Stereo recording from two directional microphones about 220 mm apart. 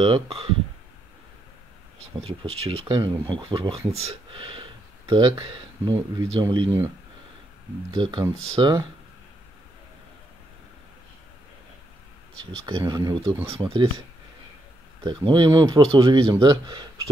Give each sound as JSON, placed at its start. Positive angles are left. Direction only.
{"t": 0.0, "sound": "speech", "side_deg": -25}
{"t": 2.2, "sound": "speech", "side_deg": -25}
{"t": 7.9, "sound": "speech", "side_deg": -20}
{"t": 12.4, "sound": "speech", "side_deg": -20}
{"t": 15.0, "sound": "speech", "side_deg": -20}